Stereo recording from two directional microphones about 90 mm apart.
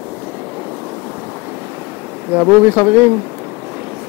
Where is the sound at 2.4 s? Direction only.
20° right (ahead or behind).